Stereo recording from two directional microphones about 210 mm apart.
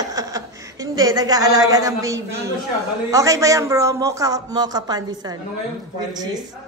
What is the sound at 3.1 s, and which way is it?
A man's voice, 15° right (ahead or behind).